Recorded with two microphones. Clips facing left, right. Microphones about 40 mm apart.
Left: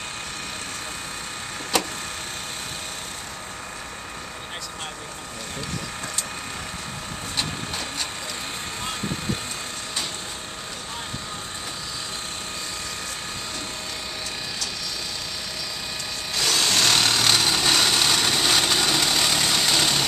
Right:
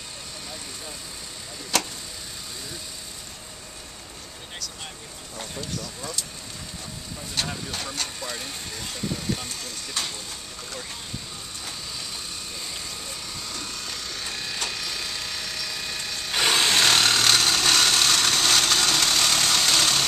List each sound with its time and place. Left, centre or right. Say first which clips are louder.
1.7 s vehicle: left 2 dB; centre
7.3 s printer: even; centre
16.3 s vehicle: right 2 dB; right
16.6 s wood: left 1 dB; centre